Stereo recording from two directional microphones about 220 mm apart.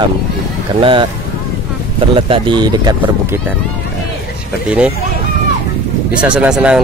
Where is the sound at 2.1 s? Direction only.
20° right (ahead or behind).